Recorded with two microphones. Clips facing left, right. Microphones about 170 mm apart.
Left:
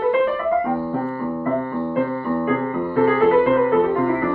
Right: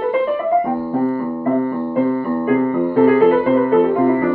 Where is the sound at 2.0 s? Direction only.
15° right (ahead or behind).